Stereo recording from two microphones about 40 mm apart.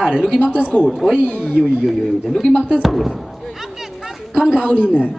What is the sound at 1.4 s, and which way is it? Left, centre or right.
Speech, centre.